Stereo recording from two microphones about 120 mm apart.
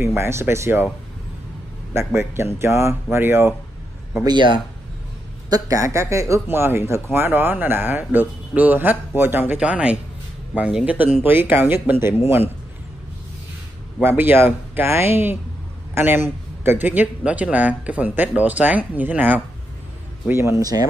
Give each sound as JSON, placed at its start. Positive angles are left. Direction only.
{"t": 0.0, "sound": "speech", "side_deg": -20}
{"t": 2.0, "sound": "speech", "side_deg": -20}
{"t": 4.2, "sound": "speech", "side_deg": -35}
{"t": 5.5, "sound": "speech", "side_deg": -30}
{"t": 14.0, "sound": "speech", "side_deg": -20}